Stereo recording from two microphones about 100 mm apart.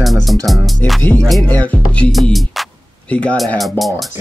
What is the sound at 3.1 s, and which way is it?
Speech, 10° left (ahead or behind).